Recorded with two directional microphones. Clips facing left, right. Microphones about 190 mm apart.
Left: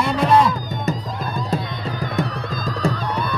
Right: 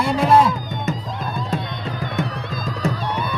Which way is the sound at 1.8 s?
Centre (ahead or behind).